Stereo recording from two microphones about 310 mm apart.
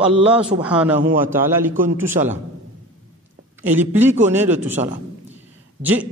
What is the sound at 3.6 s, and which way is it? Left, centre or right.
A man's voice, centre.